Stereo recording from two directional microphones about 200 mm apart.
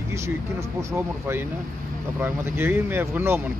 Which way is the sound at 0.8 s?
10° right (ahead or behind).